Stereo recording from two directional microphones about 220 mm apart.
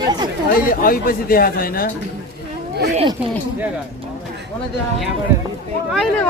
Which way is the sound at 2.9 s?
25° right (ahead or behind).